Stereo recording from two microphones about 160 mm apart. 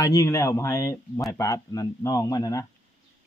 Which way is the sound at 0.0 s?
20° left (ahead or behind).